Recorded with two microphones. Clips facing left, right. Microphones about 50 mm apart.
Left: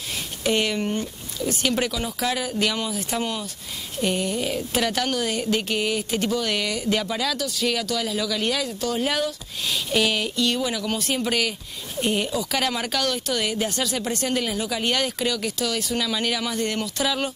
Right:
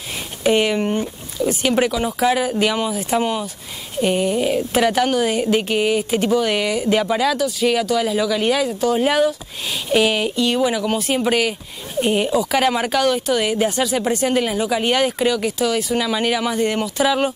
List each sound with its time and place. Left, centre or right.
0.4 s speech: centre